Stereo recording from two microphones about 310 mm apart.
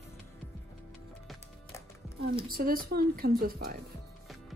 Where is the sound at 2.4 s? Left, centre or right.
Right.